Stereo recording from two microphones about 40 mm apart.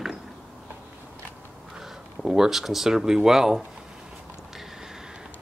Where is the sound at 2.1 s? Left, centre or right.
Centre.